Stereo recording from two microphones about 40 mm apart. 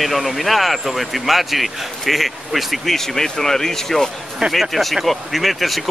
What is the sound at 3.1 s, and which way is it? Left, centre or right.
Speech, centre.